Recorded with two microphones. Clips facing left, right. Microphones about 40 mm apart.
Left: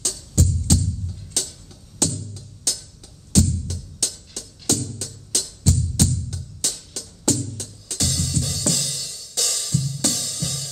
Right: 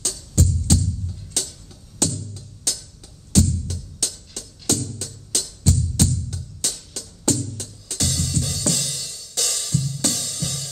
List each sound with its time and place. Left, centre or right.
0.0 s music: centre
8.0 s music: right